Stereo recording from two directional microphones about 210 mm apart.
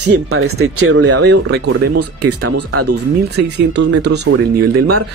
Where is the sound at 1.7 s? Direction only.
90° right.